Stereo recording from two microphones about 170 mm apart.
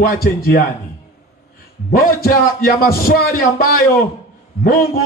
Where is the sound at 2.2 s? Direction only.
60° left (ahead or behind).